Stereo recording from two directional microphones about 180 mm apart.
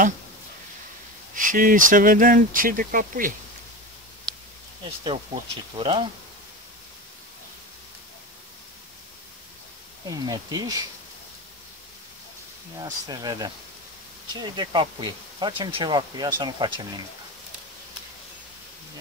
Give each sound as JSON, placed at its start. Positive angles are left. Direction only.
{"t": 1.3, "sound": "speech", "side_deg": -45}
{"t": 5.0, "sound": "speech", "side_deg": -30}
{"t": 10.0, "sound": "speech", "side_deg": -20}
{"t": 12.8, "sound": "speech", "side_deg": -20}